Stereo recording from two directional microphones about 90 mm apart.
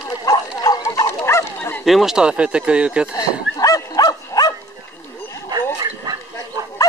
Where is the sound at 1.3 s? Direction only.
30° left (ahead or behind).